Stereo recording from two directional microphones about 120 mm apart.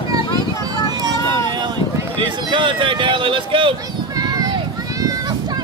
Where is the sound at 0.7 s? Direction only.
35° right (ahead or behind).